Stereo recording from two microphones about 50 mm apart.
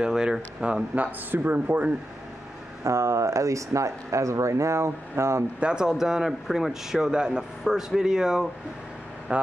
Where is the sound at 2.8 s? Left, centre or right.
Right.